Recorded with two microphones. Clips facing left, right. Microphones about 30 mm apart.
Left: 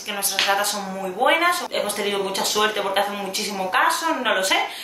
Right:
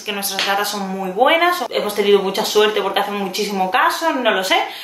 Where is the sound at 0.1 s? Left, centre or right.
Right.